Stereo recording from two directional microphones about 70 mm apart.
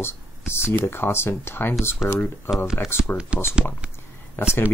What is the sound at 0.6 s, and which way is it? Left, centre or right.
Speech, left.